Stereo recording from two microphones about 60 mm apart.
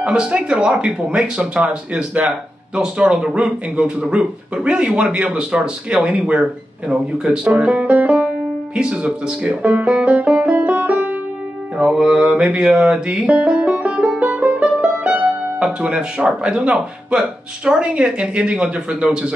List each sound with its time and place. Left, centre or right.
0.0 s speech: centre
11.7 s mantra: centre
12.2 s speech: right
12.7 s music: centre
15.6 s speech: centre